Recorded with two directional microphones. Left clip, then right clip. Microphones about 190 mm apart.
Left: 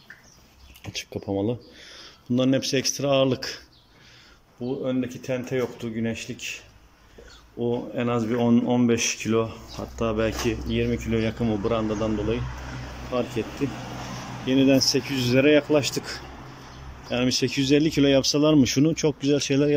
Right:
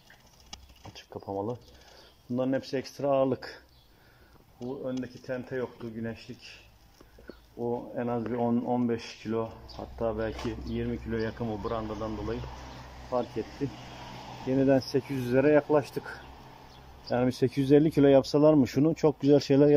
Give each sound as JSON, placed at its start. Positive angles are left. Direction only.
{"t": 0.9, "sound": "speech", "side_deg": 15}
{"t": 4.6, "sound": "speech", "side_deg": 10}
{"t": 7.5, "sound": "speech", "side_deg": 10}
{"t": 13.1, "sound": "speech", "side_deg": 10}
{"t": 14.5, "sound": "speech", "side_deg": 5}
{"t": 17.1, "sound": "speech", "side_deg": 0}